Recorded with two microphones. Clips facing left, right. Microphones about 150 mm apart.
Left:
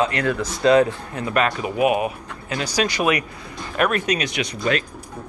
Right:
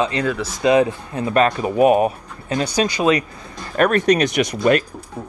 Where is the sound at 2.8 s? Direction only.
25° right (ahead or behind).